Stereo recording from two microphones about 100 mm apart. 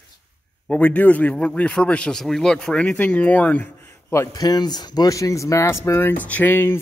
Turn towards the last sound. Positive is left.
turn(degrees=20)  # may be behind; listen again after turning